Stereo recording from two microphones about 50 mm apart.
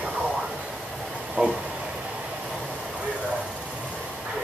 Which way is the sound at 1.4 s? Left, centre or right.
Right.